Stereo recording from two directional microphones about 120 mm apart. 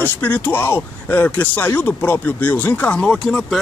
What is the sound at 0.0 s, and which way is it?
Speech, 15° left (ahead or behind).